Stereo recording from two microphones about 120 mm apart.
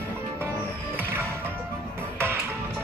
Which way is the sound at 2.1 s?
20° right (ahead or behind).